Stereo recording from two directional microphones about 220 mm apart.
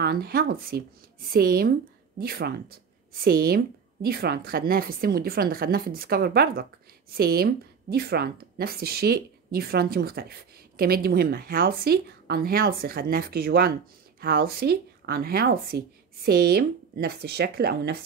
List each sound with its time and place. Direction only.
0.0 s speech: 45° right (ahead or behind)